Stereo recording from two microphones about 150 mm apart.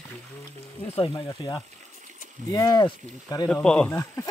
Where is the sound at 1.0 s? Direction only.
30° left (ahead or behind).